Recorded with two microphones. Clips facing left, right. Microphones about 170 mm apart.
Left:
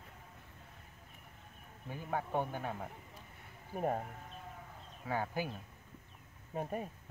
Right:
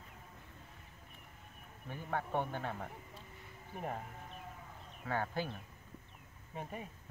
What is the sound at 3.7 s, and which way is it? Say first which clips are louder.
Speech: left 7 dB; 45° left (ahead or behind).